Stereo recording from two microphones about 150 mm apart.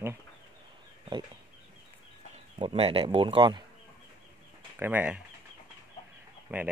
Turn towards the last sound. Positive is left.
turn(degrees=-10)  # may be behind; listen again after turning